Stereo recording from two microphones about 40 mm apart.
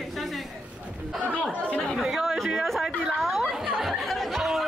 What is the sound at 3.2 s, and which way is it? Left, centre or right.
Chatter, centre.